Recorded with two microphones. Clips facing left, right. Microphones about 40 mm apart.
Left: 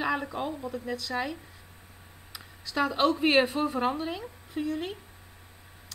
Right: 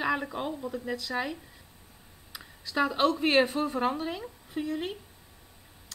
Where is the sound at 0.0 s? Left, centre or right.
Centre.